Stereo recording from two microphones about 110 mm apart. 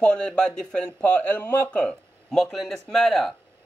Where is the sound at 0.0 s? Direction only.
10° left (ahead or behind).